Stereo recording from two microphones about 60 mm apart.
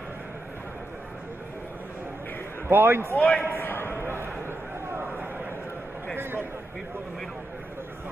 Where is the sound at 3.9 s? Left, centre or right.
Right.